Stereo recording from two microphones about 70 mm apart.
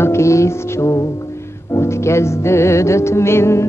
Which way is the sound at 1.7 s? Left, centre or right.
Left.